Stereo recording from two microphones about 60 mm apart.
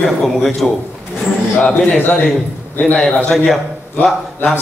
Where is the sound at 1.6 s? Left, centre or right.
Centre.